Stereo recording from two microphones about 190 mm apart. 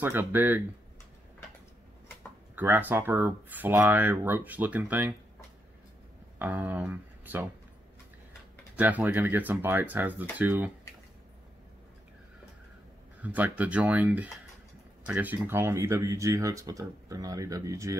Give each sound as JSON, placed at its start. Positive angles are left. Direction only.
{"t": 0.0, "sound": "speech", "side_deg": -10}
{"t": 2.5, "sound": "speech", "side_deg": -10}
{"t": 6.3, "sound": "speech", "side_deg": -10}
{"t": 8.7, "sound": "speech", "side_deg": -10}
{"t": 13.2, "sound": "speech", "side_deg": -10}